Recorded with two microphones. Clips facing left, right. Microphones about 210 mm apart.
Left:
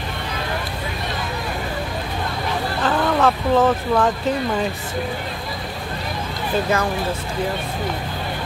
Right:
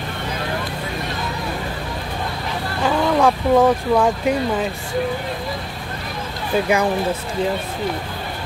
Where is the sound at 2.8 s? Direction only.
10° right (ahead or behind).